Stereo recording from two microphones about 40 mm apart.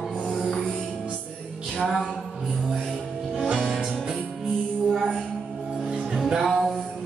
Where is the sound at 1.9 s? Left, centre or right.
Centre.